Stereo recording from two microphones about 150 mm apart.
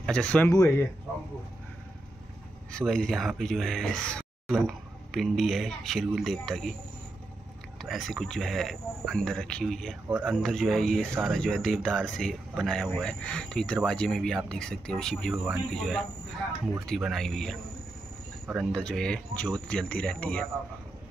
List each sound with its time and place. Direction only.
0.0 s speech: 5° left (ahead or behind)
0.5 s speech: 20° left (ahead or behind)
2.7 s speech: 5° left (ahead or behind)
7.8 s speech: centre (ahead or behind)
10.0 s speech: 10° right (ahead or behind)
10.3 s speech: centre (ahead or behind)
18.7 s speech: 5° left (ahead or behind)